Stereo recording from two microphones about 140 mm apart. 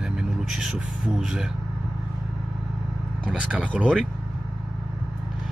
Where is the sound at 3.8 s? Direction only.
5° left (ahead or behind).